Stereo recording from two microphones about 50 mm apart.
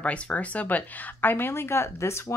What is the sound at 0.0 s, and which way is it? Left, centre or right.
Speech, left.